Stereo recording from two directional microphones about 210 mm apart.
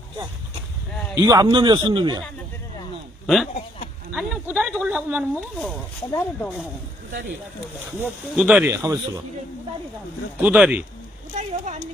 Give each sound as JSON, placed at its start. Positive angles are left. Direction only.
{"t": 1.1, "sound": "a man's voice", "side_deg": -20}
{"t": 4.1, "sound": "speech", "side_deg": -5}
{"t": 6.0, "sound": "speech", "side_deg": 10}
{"t": 8.0, "sound": "speech", "side_deg": -5}
{"t": 10.4, "sound": "speech", "side_deg": -5}
{"t": 11.3, "sound": "a sound", "side_deg": -35}